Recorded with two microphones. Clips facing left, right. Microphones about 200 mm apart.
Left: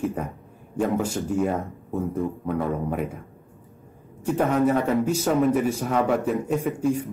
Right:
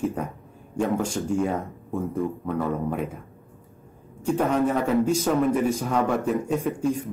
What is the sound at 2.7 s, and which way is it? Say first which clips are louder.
Speech: even; centre (ahead or behind).